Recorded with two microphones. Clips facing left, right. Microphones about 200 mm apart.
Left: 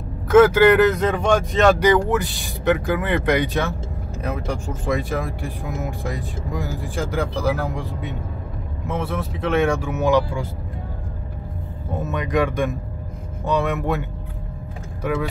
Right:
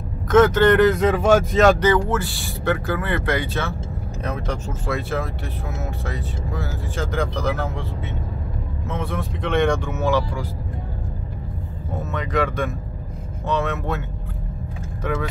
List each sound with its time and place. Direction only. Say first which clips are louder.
0.3 s speech: left 2 dB; 10° left (ahead or behind)
1.8 s speech: left 2 dB; 15° left (ahead or behind)
12.0 s speech: left 2 dB; 15° left (ahead or behind)